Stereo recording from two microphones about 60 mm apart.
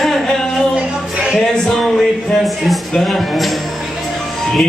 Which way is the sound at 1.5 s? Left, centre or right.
Centre.